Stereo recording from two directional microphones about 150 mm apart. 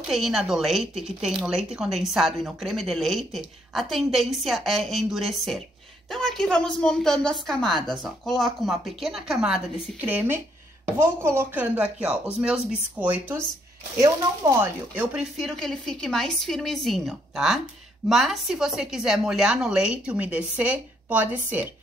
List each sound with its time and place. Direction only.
0.1 s speech: centre (ahead or behind)
13.9 s speech: 20° right (ahead or behind)
15.3 s speech: centre (ahead or behind)